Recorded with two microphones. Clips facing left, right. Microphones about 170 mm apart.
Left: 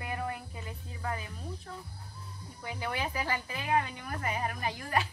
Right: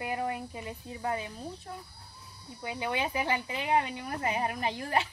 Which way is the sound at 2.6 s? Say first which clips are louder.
Right 3 dB; 15° right (ahead or behind).